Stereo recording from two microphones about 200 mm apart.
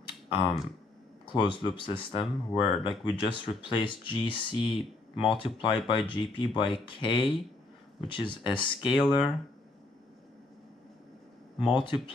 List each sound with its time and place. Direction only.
0.3 s speech: 25° left (ahead or behind)
8.8 s speech: centre (ahead or behind)
11.6 s speech: 25° left (ahead or behind)